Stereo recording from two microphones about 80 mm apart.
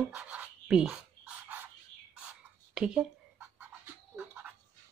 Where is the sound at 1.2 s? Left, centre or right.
Right.